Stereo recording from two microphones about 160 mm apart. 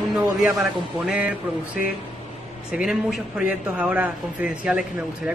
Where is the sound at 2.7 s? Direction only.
5° right (ahead or behind).